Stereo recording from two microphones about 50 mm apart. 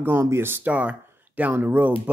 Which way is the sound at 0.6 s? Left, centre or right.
Right.